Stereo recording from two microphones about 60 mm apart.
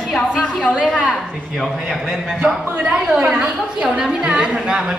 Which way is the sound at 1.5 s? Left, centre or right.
Centre.